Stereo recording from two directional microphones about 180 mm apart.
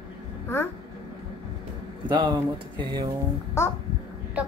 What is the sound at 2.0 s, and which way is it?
Speech, 25° right (ahead or behind).